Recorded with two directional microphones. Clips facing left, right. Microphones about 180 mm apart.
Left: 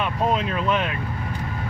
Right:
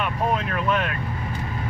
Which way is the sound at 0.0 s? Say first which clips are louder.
Left 2 dB; 20° left (ahead or behind).